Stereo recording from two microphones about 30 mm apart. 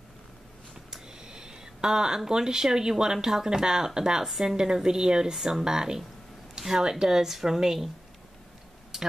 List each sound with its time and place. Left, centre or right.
1.0 s speech: right
4.3 s a woman's voice: centre
4.6 s a woman's voice: right